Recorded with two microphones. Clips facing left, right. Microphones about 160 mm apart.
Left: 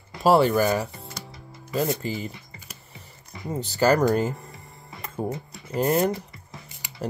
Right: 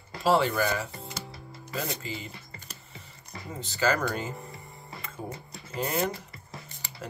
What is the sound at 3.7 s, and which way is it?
Speech, 40° left (ahead or behind).